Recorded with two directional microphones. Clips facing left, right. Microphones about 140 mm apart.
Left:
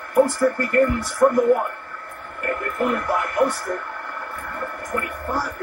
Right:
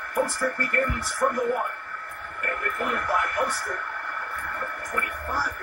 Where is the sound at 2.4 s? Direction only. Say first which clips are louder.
Left 6 dB; 25° left (ahead or behind).